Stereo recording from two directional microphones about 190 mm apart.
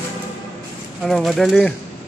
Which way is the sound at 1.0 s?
Centre (ahead or behind).